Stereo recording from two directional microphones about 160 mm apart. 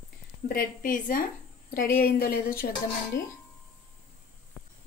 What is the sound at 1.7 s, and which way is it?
Speech, 65° left (ahead or behind).